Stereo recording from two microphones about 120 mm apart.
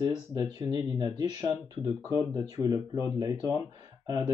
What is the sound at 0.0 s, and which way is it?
Speech, 35° right (ahead or behind).